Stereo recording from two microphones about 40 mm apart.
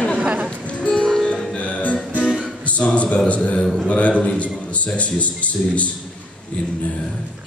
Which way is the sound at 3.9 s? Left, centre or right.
Left.